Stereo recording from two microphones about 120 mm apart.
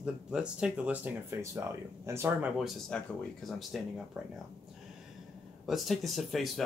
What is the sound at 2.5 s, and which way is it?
Speech, centre (ahead or behind).